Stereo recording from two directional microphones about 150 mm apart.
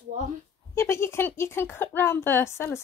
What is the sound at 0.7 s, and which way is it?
Speech, 15° left (ahead or behind).